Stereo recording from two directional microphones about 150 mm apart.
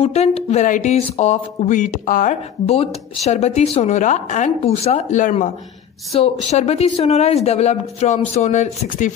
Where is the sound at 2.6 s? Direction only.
40° left (ahead or behind); by 5.5 s 60° left (ahead or behind).